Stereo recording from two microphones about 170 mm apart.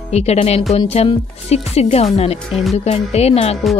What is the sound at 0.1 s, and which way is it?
Speech, 40° left (ahead or behind).